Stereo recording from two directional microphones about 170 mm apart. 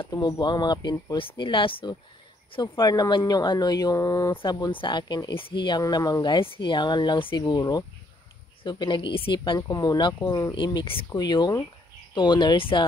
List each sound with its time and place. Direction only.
0.0 s speech: 25° left (ahead or behind)
10.5 s speech: 25° left (ahead or behind)